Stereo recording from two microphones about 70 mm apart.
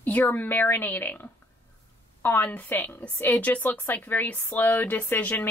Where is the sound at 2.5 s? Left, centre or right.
Left.